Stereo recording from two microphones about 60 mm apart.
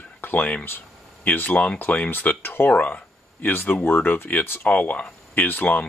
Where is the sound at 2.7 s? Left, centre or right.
Left.